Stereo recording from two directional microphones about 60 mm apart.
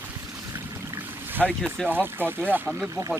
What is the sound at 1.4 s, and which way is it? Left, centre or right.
Speech, centre.